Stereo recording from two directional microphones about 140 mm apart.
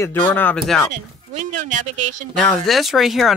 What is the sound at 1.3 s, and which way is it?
Speech, 65° right (ahead or behind).